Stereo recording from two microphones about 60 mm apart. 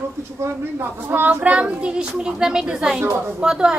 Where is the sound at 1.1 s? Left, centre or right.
Right.